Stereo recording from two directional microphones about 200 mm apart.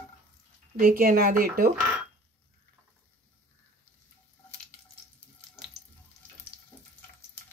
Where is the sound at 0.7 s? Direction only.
45° right (ahead or behind).